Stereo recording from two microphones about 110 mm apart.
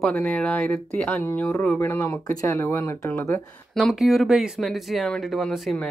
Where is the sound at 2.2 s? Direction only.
30° left (ahead or behind).